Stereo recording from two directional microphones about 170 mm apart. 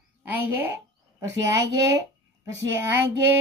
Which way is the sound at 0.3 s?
10° right (ahead or behind).